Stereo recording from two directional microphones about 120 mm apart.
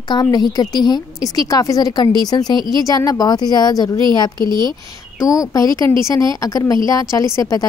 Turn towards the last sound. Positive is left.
turn(degrees=25)  # may be behind; listen again after turning